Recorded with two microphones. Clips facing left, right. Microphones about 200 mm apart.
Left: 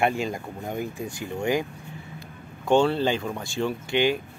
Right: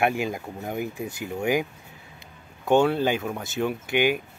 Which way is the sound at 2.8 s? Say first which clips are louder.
Right 1 dB; 10° right (ahead or behind).